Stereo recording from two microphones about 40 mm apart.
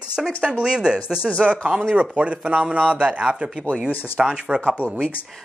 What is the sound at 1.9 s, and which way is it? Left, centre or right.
Speech, right.